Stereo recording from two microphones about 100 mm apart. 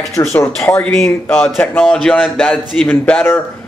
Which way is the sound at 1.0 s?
20° left (ahead or behind).